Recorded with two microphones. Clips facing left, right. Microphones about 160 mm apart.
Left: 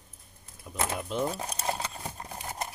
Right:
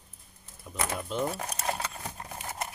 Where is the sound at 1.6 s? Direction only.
25° left (ahead or behind).